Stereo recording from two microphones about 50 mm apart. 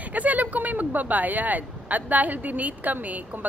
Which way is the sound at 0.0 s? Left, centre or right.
Right.